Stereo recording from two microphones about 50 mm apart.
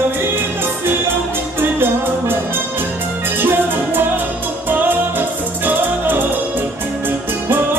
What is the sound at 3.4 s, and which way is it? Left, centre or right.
Music, right.